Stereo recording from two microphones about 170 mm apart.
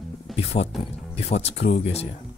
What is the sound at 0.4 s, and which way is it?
Speech, 40° left (ahead or behind).